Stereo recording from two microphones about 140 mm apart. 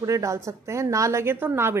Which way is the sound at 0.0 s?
20° right (ahead or behind).